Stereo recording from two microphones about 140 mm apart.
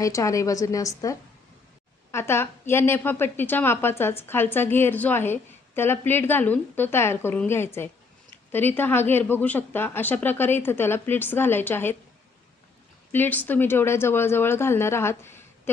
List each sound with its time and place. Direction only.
0.0 s a woman's voice: 25° left (ahead or behind)
13.1 s a woman's voice: 10° left (ahead or behind)